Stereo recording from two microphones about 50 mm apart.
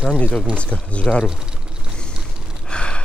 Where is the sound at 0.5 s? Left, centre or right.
Left.